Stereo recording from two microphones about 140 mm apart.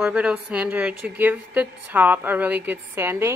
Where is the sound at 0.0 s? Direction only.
10° right (ahead or behind).